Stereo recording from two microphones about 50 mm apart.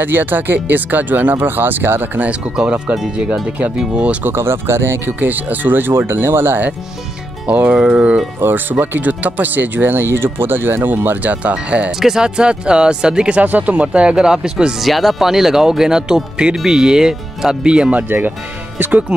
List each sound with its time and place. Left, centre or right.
0.0 s speech: right
2.2 s speech: right
3.9 s speech: right
4.2 s speech: right
5.2 s speech: right
7.4 s speech: right
8.4 s speech: right
11.4 s speech: right
12.0 s speech: centre
13.4 s speech: right; by 14.8 s centre
14.8 s speech: centre
17.9 s speech: right